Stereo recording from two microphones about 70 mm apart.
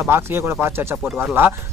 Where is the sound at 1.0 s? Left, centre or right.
Centre.